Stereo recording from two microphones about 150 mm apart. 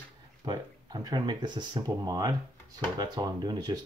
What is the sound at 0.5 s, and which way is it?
Speech, 25° right (ahead or behind).